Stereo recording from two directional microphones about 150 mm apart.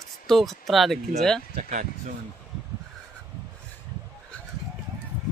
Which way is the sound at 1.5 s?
60° right (ahead or behind).